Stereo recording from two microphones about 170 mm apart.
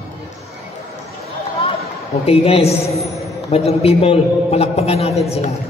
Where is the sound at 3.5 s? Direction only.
35° left (ahead or behind).